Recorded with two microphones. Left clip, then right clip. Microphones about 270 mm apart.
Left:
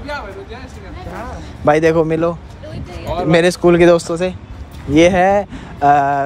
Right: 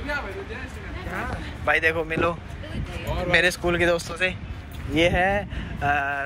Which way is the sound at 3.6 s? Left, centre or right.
Left.